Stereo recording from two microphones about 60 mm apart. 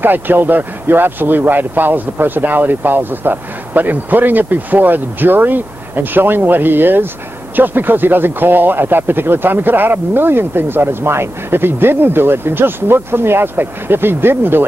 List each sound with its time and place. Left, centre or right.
0.0 s speech: right